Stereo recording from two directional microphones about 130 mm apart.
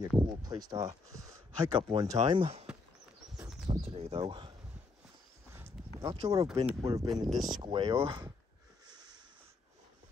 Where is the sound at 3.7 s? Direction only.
50° right (ahead or behind).